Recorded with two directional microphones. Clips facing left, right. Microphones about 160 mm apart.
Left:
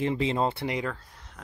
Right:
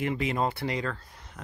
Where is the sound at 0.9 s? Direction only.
5° right (ahead or behind).